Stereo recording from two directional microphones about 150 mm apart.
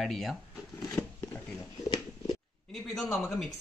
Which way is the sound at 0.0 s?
Centre (ahead or behind).